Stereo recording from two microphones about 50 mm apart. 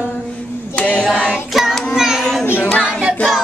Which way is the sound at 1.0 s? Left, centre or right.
Centre.